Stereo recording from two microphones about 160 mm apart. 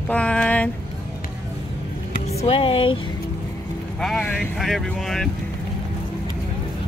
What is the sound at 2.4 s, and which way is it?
Speech, 35° left (ahead or behind).